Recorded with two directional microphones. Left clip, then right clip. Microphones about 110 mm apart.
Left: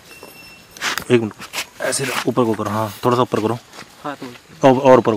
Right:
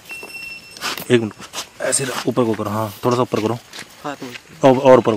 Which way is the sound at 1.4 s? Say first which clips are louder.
Left 3 dB; 20° left (ahead or behind).